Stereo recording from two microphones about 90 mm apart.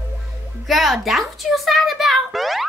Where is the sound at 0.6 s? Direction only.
Centre (ahead or behind).